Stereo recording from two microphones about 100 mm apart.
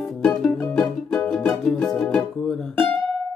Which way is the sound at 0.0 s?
5° left (ahead or behind).